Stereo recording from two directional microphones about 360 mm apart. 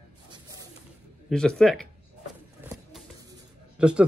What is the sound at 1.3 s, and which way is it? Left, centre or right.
Speech, centre.